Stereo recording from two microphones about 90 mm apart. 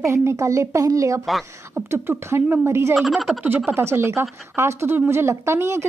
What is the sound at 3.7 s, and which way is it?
Speech, 25° right (ahead or behind).